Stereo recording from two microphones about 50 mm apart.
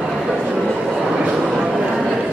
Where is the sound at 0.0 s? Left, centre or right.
Centre.